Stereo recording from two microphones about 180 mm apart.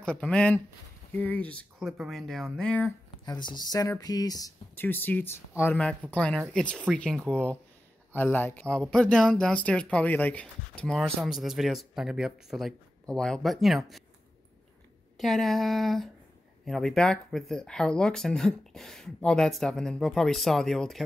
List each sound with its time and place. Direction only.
0.0 s speech: 5° left (ahead or behind)
3.3 s speech: 25° left (ahead or behind); by 14.0 s centre (ahead or behind)
15.1 s speech: centre (ahead or behind)